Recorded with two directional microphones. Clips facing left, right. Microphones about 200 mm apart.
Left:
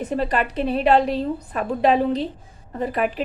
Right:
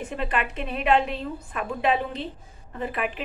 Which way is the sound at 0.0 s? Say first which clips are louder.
Left 6 dB; 35° left (ahead or behind).